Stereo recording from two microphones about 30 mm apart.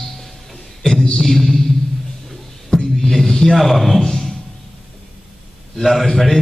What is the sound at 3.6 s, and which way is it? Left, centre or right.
Speech, centre.